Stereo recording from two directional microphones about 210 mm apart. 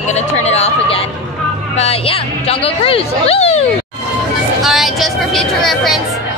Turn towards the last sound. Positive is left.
turn(degrees=0)  # may be behind; listen again after turning